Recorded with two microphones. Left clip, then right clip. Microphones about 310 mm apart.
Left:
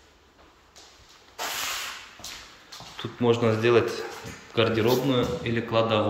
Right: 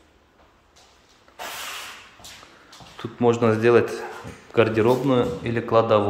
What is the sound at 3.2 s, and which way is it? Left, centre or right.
A man's voice, centre.